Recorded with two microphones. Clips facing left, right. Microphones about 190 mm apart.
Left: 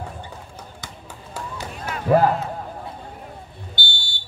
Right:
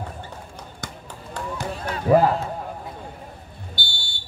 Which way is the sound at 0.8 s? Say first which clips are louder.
Right 4 dB; 50° right (ahead or behind).